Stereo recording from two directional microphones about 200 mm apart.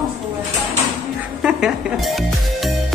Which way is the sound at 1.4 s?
Centre (ahead or behind).